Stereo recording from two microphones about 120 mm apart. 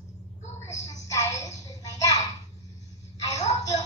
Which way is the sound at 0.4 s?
70° left (ahead or behind).